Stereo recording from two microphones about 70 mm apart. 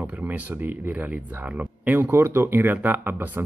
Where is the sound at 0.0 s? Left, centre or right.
Right.